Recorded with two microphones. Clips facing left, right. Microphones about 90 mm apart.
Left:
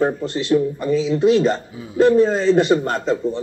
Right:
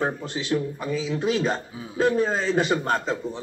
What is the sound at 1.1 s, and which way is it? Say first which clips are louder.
Speech: left 8 dB; 10° right (ahead or behind).